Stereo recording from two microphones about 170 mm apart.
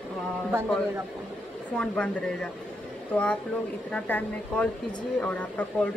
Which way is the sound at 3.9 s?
10° left (ahead or behind).